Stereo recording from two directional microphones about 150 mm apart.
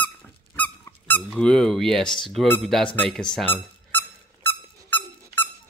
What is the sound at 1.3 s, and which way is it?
Speech, 5° left (ahead or behind).